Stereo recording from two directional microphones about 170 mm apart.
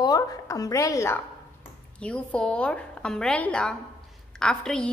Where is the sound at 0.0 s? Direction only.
20° left (ahead or behind).